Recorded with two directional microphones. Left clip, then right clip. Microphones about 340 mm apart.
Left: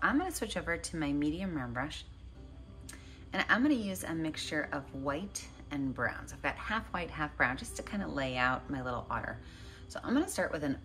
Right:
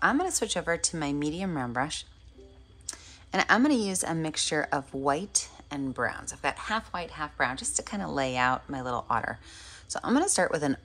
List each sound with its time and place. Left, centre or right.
0.0 s a woman's voice: centre